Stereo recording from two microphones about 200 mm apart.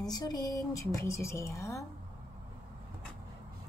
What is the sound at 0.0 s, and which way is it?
A woman's voice, 20° left (ahead or behind).